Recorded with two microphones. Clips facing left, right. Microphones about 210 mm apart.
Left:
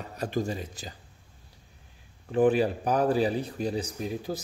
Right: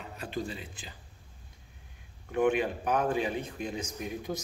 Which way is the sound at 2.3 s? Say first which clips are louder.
Left 4 dB; 35° left (ahead or behind).